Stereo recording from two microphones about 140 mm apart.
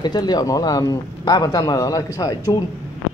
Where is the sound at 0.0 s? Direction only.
30° left (ahead or behind).